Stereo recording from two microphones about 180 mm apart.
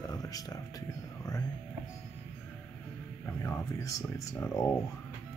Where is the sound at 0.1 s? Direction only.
20° left (ahead or behind).